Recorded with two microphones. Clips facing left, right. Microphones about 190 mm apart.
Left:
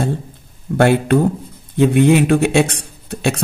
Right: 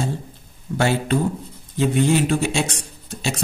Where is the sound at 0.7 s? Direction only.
60° left (ahead or behind).